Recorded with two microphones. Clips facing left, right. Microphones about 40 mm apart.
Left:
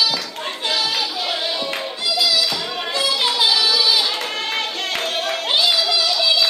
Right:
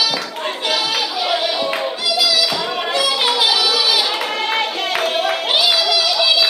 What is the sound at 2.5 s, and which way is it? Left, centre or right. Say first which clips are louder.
Music: right 4 dB; centre.